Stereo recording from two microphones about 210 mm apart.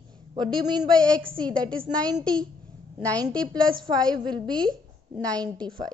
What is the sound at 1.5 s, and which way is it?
Speech, 5° left (ahead or behind).